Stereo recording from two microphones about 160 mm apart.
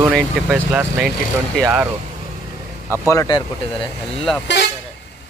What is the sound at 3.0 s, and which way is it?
Speech, 25° left (ahead or behind).